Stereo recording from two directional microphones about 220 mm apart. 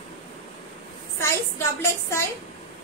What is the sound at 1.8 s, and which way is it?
Speech, 10° left (ahead or behind).